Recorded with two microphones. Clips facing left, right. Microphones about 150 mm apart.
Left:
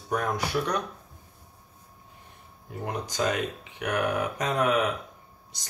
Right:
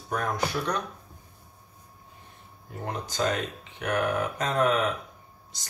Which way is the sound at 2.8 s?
15° left (ahead or behind).